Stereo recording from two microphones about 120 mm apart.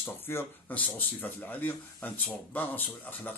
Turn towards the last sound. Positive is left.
turn(degrees=15)  # may be behind; listen again after turning